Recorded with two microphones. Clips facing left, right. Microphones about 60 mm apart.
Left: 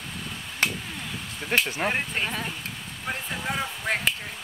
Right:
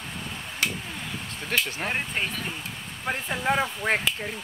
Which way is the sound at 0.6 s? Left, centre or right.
Left.